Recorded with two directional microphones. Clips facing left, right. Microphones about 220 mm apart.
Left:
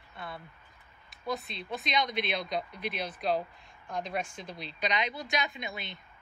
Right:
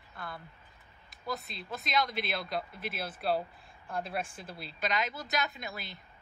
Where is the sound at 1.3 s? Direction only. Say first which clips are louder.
Left 3 dB; centre (ahead or behind).